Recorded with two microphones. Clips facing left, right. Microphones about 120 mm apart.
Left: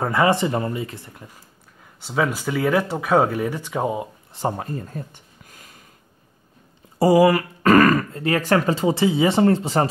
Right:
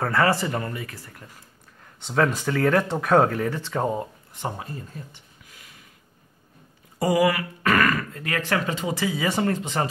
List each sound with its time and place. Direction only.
0.0 s speech: 15° left (ahead or behind)
2.0 s speech: 5° left (ahead or behind)
4.3 s a sound: 35° left (ahead or behind)
7.0 s speech: 30° left (ahead or behind)